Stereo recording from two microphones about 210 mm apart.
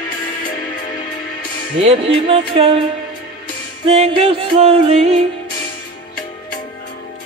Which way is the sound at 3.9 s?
25° right (ahead or behind).